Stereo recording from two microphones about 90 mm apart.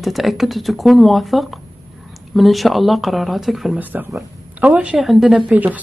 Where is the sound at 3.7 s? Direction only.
20° right (ahead or behind).